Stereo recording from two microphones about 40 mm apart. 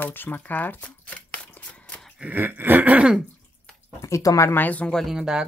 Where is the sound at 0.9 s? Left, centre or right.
Left.